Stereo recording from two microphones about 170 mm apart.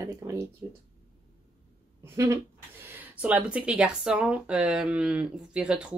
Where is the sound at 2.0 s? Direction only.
15° right (ahead or behind).